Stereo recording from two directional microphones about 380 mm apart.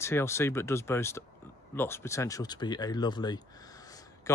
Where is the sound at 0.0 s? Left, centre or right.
Centre.